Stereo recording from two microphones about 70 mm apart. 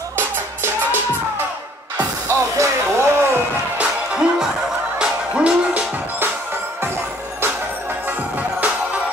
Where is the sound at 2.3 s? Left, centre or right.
Right.